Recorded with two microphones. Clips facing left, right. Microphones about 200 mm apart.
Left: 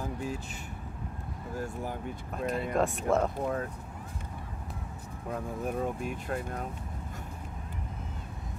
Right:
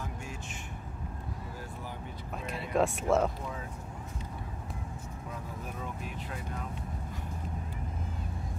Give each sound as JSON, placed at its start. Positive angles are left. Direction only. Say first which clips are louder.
{"t": 0.0, "sound": "vehicle", "louder": "left 7 dB", "side_deg": 35}
{"t": 1.6, "sound": "a sound", "louder": "left 7 dB", "side_deg": 45}
{"t": 2.3, "sound": "speech", "louder": "left 2 dB", "side_deg": 0}
{"t": 3.3, "sound": "speech", "louder": "left 9 dB", "side_deg": 55}
{"t": 5.3, "sound": "speech", "louder": "left 10 dB", "side_deg": 50}